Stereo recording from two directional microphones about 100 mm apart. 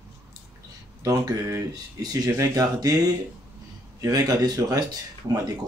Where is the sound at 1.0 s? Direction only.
35° right (ahead or behind).